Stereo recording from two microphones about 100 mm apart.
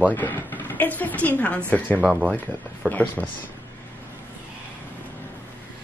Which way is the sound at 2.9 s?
15° left (ahead or behind).